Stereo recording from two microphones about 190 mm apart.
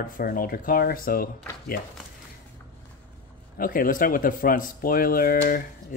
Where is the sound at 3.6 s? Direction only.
45° left (ahead or behind).